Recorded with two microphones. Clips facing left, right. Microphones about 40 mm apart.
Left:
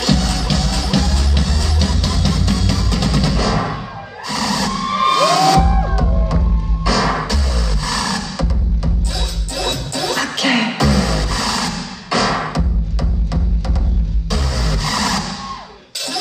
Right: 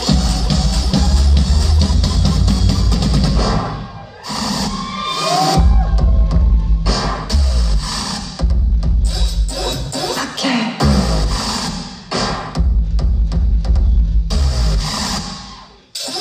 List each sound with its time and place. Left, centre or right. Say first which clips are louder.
0.0 s music: left 1 dB; left
14.3 s music: left 3 dB; left